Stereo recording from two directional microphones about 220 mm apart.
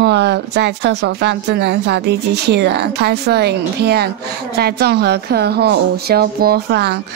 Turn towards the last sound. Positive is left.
turn(degrees=-50)  # may be behind; listen again after turning